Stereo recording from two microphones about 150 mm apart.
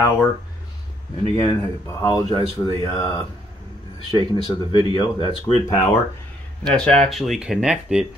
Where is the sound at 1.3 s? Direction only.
25° left (ahead or behind).